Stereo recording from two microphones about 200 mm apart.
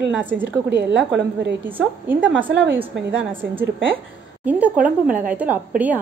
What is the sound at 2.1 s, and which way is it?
A woman's voice, 10° right (ahead or behind).